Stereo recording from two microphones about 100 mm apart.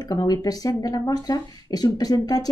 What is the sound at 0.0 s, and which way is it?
A woman's voice, 40° left (ahead or behind).